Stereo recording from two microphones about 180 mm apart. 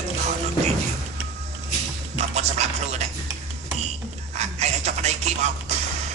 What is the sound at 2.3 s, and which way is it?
Music, 40° right (ahead or behind).